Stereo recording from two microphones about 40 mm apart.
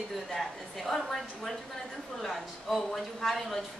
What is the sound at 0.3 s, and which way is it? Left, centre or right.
Speech, centre.